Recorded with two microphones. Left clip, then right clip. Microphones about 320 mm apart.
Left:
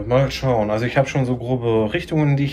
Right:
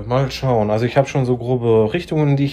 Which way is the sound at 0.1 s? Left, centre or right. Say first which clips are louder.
Even; centre.